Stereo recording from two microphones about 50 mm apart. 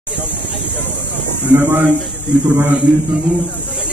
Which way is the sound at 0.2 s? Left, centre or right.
Left.